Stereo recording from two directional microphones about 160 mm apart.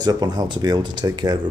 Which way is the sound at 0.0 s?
25° right (ahead or behind).